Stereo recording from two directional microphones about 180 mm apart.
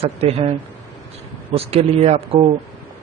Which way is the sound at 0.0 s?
35° right (ahead or behind).